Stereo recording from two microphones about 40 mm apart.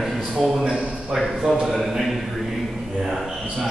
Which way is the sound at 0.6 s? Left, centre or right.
Centre.